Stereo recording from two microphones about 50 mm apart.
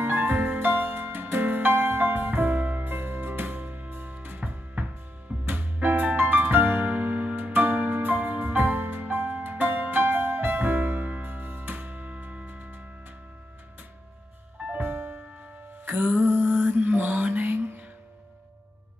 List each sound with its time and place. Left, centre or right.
0.0 s music: right
14.8 s music: right
15.8 s mantra: right